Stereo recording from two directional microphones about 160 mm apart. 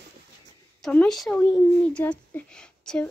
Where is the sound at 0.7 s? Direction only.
Centre (ahead or behind).